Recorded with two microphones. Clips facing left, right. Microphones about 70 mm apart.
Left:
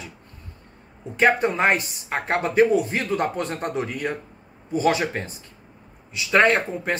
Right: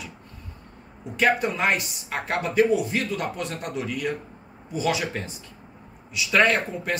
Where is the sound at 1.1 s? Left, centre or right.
Left.